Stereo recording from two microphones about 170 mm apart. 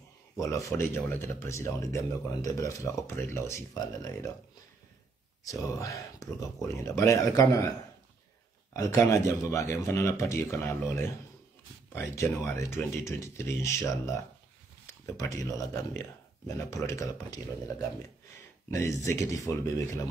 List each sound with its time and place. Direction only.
0.4 s speech: 20° left (ahead or behind)
5.4 s speech: 20° left (ahead or behind)
8.7 s speech: 20° left (ahead or behind)
12.2 s speech: 15° left (ahead or behind)